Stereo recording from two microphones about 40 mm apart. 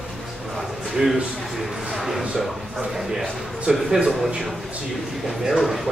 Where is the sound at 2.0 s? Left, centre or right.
Centre.